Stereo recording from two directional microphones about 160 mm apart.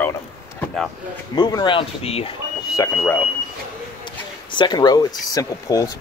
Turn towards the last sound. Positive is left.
turn(degrees=20)  # may be behind; listen again after turning